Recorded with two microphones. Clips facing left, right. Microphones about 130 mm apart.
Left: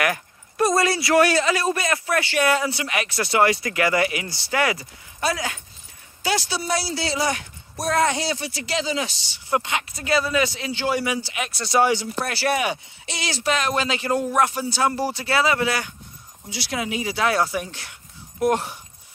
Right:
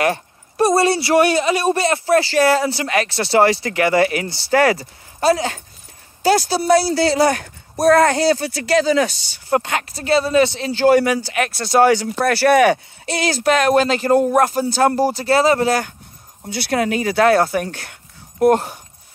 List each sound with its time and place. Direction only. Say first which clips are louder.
0.0 s speech: right 5 dB; 30° right (ahead or behind); by 12.8 s 60° right (ahead or behind)
13.0 s speech: right 7 dB; 50° right (ahead or behind)
16.4 s speech: right 8 dB; 55° right (ahead or behind)